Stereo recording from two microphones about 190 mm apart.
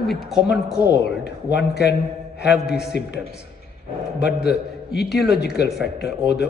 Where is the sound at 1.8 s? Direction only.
60° left (ahead or behind).